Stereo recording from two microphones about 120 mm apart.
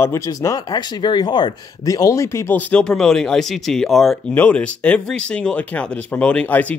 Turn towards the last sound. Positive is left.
turn(degrees=15)  # may be behind; listen again after turning